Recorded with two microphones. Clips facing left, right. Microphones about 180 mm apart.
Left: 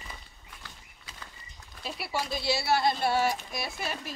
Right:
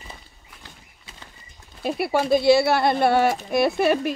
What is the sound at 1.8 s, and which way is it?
Speech, 55° right (ahead or behind).